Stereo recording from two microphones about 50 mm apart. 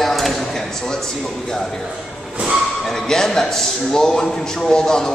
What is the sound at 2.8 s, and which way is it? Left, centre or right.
A man's voice, centre.